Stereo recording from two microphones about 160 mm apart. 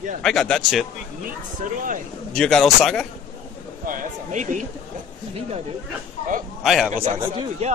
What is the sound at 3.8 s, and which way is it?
Speech, 55° right (ahead or behind).